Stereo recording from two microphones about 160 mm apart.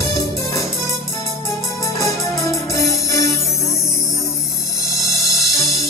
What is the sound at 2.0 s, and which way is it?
Music, 20° left (ahead or behind).